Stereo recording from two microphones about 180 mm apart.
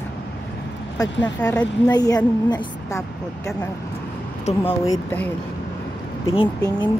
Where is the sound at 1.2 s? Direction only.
5° left (ahead or behind).